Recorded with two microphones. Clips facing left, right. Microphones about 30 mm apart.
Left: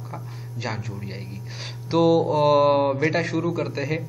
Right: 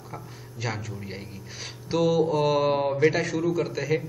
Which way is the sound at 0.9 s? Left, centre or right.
Centre.